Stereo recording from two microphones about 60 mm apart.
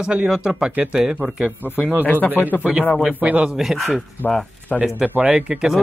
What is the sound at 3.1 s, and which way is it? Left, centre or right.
Speech, right.